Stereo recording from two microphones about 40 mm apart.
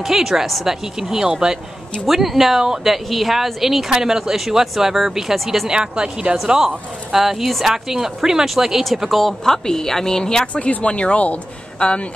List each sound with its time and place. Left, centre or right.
0.0 s speech: centre
2.0 s speech: centre
5.7 s speech: right; by 9.3 s centre
9.4 s a woman's voice: centre
10.4 s speech: left